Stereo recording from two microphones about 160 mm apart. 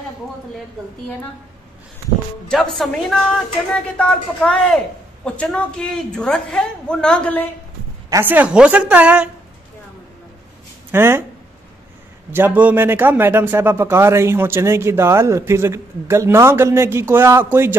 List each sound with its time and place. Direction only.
2.4 s a woman's voice: 5° left (ahead or behind)
8.1 s a man's voice: 15° right (ahead or behind)
10.9 s speech: 15° right (ahead or behind)
12.3 s a man's voice: 10° right (ahead or behind)